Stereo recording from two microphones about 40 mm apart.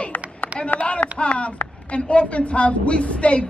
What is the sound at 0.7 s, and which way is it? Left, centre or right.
Speech, left.